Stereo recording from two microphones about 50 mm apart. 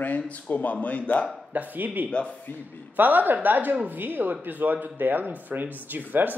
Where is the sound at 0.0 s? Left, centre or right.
Left.